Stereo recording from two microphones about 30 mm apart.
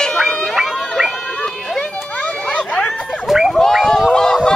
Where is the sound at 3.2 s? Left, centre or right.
Centre.